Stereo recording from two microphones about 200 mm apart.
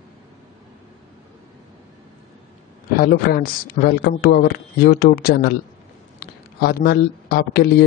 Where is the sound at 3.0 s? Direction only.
50° left (ahead or behind).